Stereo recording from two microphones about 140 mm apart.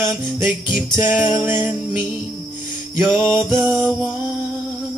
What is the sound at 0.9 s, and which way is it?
Music, 15° right (ahead or behind).